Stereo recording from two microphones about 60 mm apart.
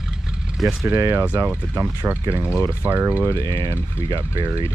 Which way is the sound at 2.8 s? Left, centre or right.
Right.